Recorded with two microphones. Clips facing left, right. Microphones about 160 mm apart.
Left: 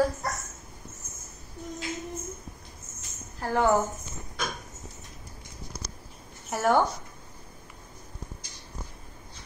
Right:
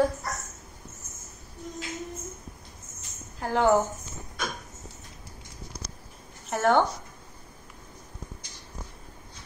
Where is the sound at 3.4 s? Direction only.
15° right (ahead or behind).